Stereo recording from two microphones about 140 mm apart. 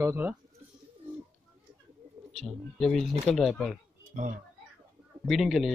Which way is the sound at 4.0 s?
70° right (ahead or behind).